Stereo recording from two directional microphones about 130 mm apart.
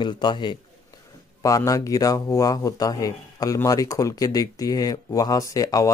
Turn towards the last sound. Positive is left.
turn(degrees=25)  # may be behind; listen again after turning